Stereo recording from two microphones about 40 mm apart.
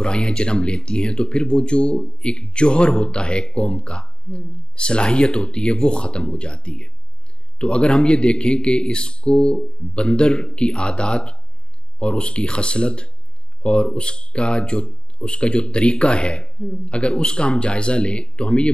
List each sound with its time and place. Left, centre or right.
0.0 s speech: left